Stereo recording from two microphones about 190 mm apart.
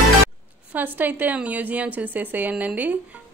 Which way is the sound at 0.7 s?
10° right (ahead or behind).